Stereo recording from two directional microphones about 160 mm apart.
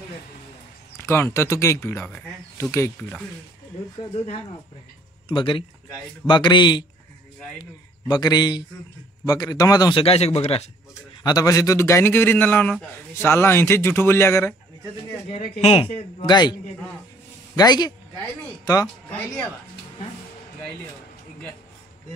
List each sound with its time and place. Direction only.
0.9 s a man's voice: 15° left (ahead or behind)
5.3 s a man's voice: 30° left (ahead or behind)
8.1 s a man's voice: 25° left (ahead or behind); by 10.7 s 40° left (ahead or behind)
11.2 s a man's voice: 20° left (ahead or behind)
15.2 s a man's voice: 40° left (ahead or behind)
17.6 s a man's voice: 25° left (ahead or behind)
19.0 s a man's voice: 10° left (ahead or behind)